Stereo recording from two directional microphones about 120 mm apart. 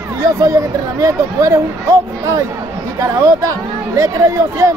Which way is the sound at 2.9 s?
25° right (ahead or behind).